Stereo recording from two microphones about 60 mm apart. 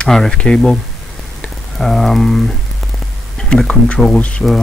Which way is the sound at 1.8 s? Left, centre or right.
Centre.